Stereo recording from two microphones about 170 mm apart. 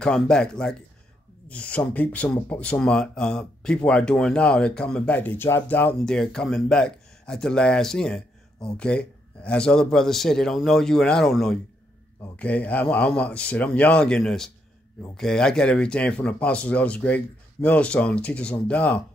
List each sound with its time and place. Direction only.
0.0 s speech: 5° left (ahead or behind)